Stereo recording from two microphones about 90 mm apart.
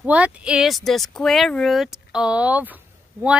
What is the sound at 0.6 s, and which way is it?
Speech, centre (ahead or behind).